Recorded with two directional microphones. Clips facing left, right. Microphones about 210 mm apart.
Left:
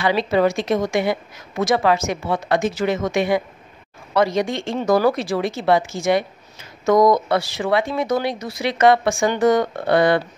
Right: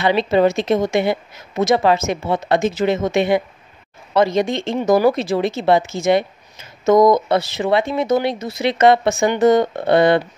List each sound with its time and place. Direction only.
0.0 s speech: 25° right (ahead or behind)